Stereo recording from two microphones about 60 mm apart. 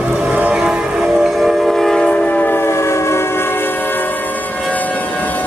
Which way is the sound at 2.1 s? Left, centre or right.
Left.